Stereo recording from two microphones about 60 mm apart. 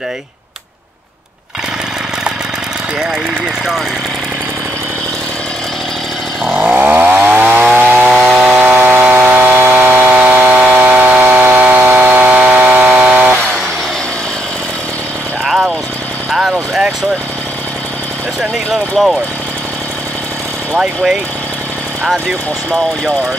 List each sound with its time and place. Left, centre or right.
6.5 s chainsaw: right
8.2 s chainsaw: centre
8.5 s chainsaw: right
10.6 s a sound: right
11.2 s chainsaw: right
15.4 s vehicle: centre
18.4 s vehicle: centre
20.7 s vehicle: centre